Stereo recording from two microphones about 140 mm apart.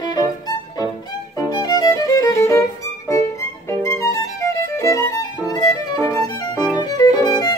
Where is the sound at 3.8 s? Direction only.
20° left (ahead or behind).